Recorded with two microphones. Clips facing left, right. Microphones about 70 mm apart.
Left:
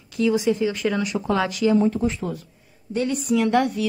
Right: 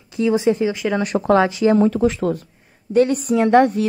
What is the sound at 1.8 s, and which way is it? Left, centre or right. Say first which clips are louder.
Speech: right 5 dB; right.